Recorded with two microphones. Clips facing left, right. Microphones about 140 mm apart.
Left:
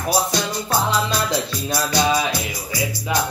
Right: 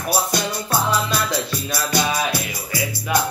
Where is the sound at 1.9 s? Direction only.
55° right (ahead or behind).